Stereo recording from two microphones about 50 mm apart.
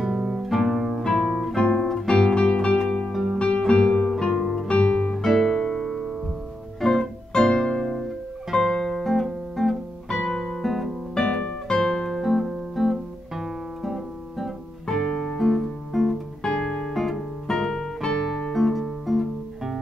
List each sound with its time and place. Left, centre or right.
0.0 s music: centre
1.0 s music: centre
3.1 s music: centre
3.3 s music: left; by 4.6 s centre
4.6 s guitar: centre
5.2 s music: centre
11.1 s music: centre